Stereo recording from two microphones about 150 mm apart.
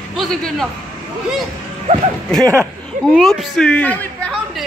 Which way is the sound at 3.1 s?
Centre (ahead or behind).